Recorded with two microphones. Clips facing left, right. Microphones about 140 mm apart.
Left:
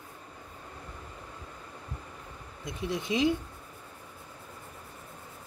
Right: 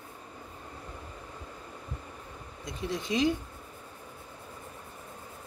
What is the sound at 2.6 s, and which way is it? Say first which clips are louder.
Speech: left 1 dB; 20° left (ahead or behind).